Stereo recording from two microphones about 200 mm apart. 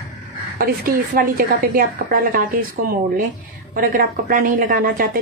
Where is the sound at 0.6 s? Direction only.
45° right (ahead or behind).